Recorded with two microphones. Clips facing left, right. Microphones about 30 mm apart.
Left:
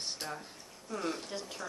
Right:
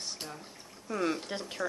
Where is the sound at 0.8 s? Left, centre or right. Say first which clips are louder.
Right 5 dB; right.